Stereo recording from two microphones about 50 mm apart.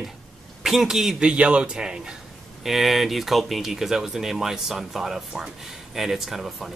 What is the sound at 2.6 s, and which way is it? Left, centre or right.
Speech, centre.